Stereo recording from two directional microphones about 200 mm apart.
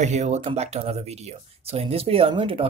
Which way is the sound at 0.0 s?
35° right (ahead or behind).